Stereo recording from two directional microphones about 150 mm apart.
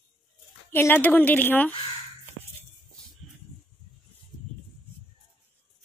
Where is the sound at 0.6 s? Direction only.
15° left (ahead or behind).